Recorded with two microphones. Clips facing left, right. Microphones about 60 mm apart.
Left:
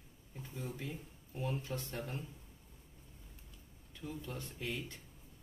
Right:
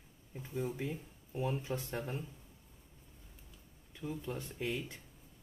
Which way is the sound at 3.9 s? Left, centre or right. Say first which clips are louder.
Right 4 dB; centre.